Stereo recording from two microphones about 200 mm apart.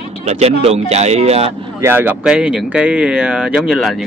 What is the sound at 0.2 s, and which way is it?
Speech, 35° right (ahead or behind).